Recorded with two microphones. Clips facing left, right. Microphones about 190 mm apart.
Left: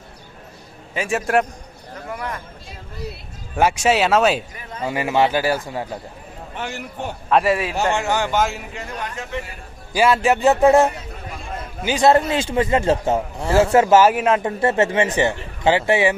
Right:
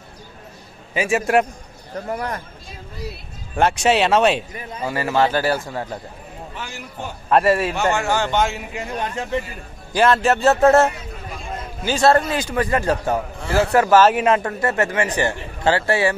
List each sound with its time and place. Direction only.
0.9 s speech: centre (ahead or behind)
2.0 s speech: 40° right (ahead or behind)
3.5 s speech: 5° left (ahead or behind)
4.8 s speech: 15° left (ahead or behind)
6.5 s a man's voice: 65° left (ahead or behind)
7.2 s speech: centre (ahead or behind)
7.9 s a man's voice: 20° left (ahead or behind)
8.3 s speech: centre (ahead or behind)
8.9 s speech: 30° right (ahead or behind)
9.9 s a man's voice: 10° left (ahead or behind)
14.0 s speech: 5° left (ahead or behind)
14.4 s a man's voice: 25° left (ahead or behind)